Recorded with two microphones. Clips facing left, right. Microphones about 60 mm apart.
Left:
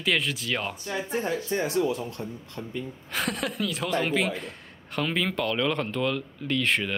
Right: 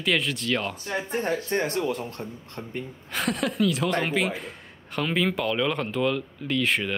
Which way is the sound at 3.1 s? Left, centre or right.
Centre.